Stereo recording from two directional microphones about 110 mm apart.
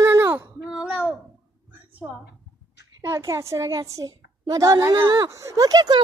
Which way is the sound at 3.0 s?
30° right (ahead or behind).